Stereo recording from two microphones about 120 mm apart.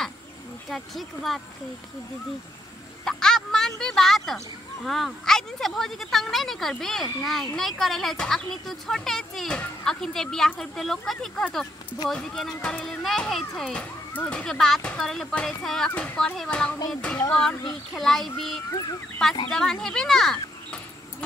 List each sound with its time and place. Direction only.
0.7 s speech: centre (ahead or behind)
3.1 s speech: 5° left (ahead or behind)
18.7 s speech: 30° left (ahead or behind)
19.2 s speech: 5° left (ahead or behind)